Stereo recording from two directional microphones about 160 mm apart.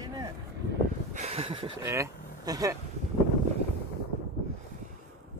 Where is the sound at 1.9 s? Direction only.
20° right (ahead or behind).